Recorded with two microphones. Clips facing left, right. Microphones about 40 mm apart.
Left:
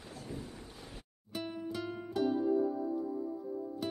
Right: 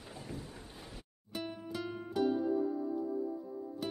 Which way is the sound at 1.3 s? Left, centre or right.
Centre.